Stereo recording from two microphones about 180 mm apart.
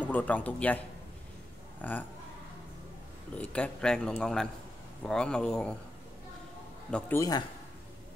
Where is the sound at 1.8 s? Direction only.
10° left (ahead or behind).